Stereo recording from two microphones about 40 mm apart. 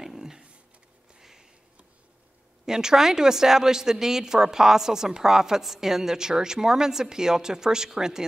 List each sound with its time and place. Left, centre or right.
0.0 s a sound: centre
1.2 s sniff: centre
2.6 s speech: centre